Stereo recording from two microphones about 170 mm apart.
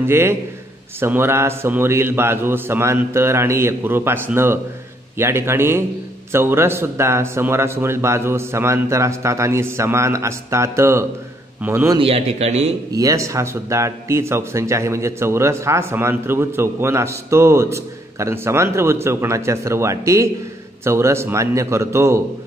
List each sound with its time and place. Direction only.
0.0 s speech: 15° right (ahead or behind)
12.0 s a man's voice: 35° right (ahead or behind)
12.9 s speech: 20° right (ahead or behind)